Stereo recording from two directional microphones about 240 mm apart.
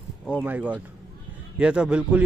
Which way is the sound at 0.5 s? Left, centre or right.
Centre.